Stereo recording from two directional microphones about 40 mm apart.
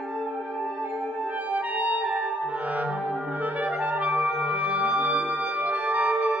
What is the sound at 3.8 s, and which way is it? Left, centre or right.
Music, right.